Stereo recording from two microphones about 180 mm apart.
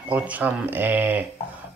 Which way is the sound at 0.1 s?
10° right (ahead or behind).